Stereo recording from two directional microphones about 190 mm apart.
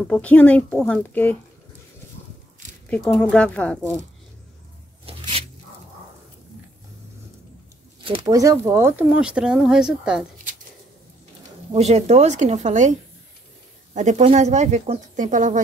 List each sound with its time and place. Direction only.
0.0 s a woman's voice: 5° left (ahead or behind)
2.9 s speech: 5° left (ahead or behind)
5.0 s a sound: 30° right (ahead or behind)
8.0 s speech: 25° right (ahead or behind); by 10.2 s 5° right (ahead or behind)
11.7 s speech: 35° right (ahead or behind)
13.9 s speech: 35° right (ahead or behind)